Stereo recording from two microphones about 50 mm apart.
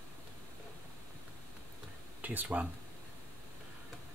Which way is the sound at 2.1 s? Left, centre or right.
Right.